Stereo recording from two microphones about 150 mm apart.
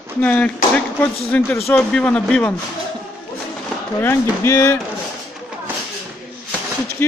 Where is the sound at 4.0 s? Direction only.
15° left (ahead or behind).